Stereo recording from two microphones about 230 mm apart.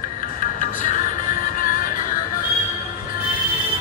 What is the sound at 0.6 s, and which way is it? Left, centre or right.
Music, left.